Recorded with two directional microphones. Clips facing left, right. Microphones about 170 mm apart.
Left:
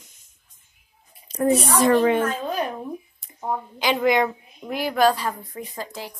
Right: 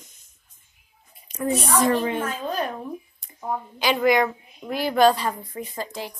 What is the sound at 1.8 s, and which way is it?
Speech, 90° left.